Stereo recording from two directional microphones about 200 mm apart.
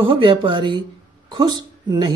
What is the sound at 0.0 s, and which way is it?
Speech, 25° right (ahead or behind).